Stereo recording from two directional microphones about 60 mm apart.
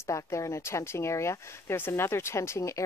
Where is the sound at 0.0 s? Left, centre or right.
Left.